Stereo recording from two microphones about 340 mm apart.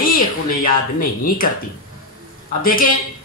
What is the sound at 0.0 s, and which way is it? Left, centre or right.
Speech, left.